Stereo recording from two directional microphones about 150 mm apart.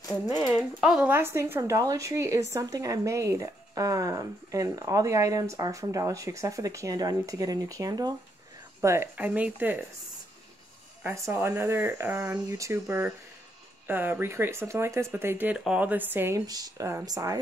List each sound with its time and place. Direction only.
0.3 s speech: 25° left (ahead or behind)
0.6 s speech: 5° right (ahead or behind)
11.0 s speech: 20° right (ahead or behind)